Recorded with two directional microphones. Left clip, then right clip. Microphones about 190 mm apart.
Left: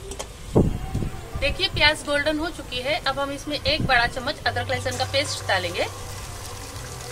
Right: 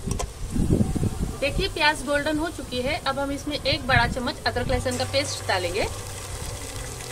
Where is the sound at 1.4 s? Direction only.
50° right (ahead or behind).